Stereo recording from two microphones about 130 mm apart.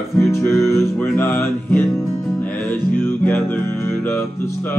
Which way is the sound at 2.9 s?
15° left (ahead or behind).